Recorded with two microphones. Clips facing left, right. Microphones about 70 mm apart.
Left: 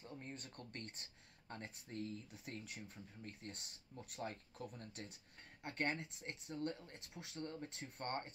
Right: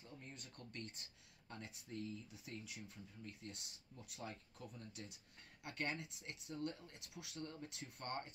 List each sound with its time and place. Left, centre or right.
0.0 s speech: left